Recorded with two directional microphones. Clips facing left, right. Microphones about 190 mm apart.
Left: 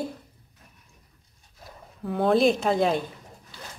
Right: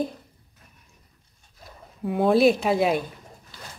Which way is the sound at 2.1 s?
5° right (ahead or behind).